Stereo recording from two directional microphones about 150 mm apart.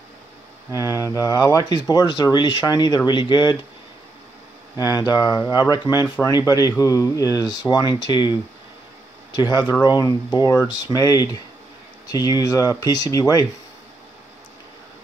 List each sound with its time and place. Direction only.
0.7 s speech: 25° left (ahead or behind)
4.7 s speech: 25° left (ahead or behind)